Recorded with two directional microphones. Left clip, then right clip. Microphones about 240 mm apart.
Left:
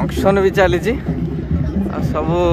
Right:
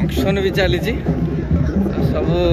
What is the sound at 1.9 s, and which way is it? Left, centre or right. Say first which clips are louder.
Speech: left 2 dB; centre.